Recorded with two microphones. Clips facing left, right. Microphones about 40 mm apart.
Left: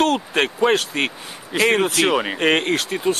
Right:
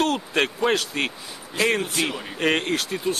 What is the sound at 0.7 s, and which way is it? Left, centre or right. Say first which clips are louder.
Speech: left 4 dB; left.